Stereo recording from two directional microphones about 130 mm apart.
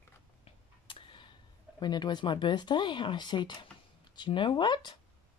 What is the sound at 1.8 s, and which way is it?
Speech, 35° left (ahead or behind).